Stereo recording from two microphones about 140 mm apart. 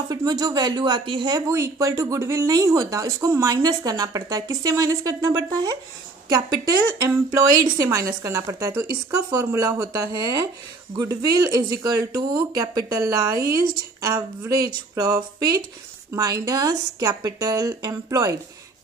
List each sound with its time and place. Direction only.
0.1 s speech: 25° right (ahead or behind)
1.5 s speech: 20° right (ahead or behind)